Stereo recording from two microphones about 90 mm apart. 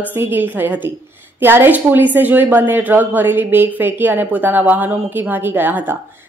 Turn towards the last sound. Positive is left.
turn(degrees=-20)  # may be behind; listen again after turning